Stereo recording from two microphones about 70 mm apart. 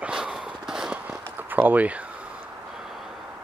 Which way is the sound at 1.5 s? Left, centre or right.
Right.